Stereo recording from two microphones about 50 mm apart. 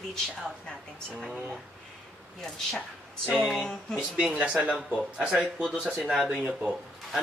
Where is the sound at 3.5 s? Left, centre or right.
Centre.